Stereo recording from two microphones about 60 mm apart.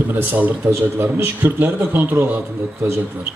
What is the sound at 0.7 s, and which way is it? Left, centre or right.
A man's voice, right.